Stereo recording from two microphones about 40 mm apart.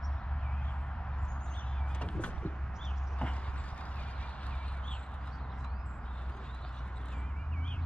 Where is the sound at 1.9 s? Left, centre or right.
Left.